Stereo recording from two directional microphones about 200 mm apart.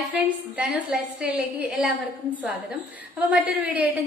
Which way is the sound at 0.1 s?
5° right (ahead or behind).